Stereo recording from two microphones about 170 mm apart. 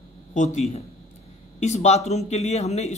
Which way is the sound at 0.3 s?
45° left (ahead or behind).